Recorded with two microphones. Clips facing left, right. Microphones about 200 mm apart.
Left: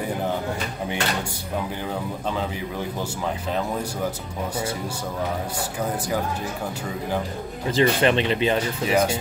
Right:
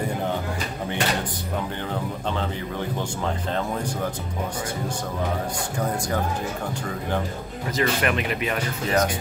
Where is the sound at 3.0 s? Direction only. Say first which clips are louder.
Even; 5° left (ahead or behind).